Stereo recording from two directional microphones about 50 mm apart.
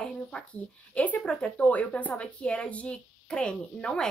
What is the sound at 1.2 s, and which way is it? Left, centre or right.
Speech, centre.